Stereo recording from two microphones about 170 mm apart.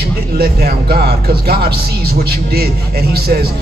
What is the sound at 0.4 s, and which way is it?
Speech, 65° right (ahead or behind).